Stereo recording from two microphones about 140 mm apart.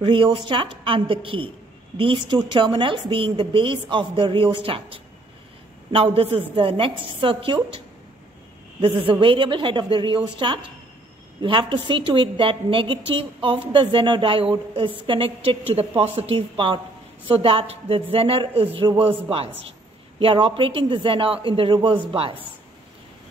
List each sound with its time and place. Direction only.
0.0 s a woman's voice: 40° right (ahead or behind)
8.8 s a woman's voice: 40° right (ahead or behind)